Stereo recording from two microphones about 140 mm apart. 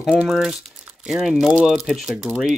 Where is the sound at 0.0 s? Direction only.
5° right (ahead or behind).